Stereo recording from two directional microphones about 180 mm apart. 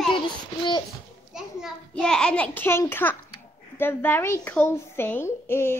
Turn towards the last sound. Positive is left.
turn(degrees=15)  # may be behind; listen again after turning